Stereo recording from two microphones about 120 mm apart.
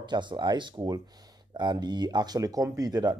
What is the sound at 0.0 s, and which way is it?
Speech, 40° right (ahead or behind).